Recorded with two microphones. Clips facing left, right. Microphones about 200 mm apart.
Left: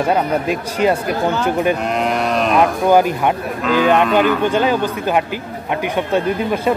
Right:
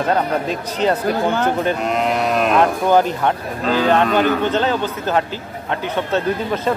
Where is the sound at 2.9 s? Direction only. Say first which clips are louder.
Left 2 dB; 10° left (ahead or behind).